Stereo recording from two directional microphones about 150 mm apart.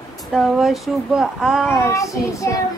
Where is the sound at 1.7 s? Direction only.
20° left (ahead or behind).